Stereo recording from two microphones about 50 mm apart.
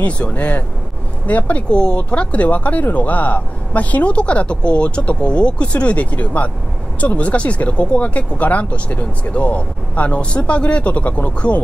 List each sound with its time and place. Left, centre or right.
0.0 s speech: left